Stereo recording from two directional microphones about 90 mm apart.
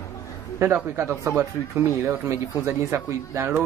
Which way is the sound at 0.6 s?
25° right (ahead or behind).